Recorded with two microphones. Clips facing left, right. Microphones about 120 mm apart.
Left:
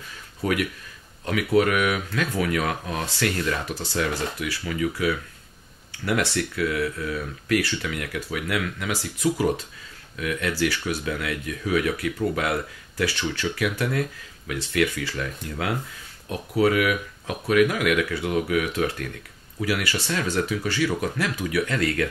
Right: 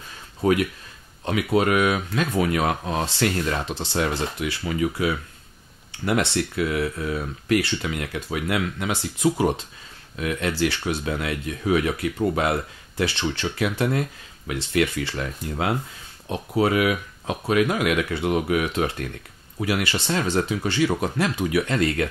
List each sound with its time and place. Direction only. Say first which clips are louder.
0.4 s speech: right 4 dB; 30° right (ahead or behind)